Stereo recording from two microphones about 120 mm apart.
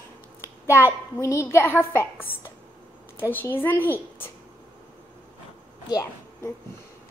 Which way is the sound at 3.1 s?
20° left (ahead or behind).